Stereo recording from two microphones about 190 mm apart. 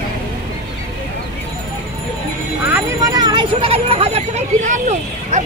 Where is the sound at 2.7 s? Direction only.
15° right (ahead or behind).